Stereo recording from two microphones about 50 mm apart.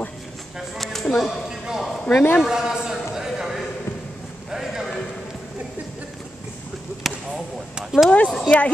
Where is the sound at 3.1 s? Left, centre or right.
Centre.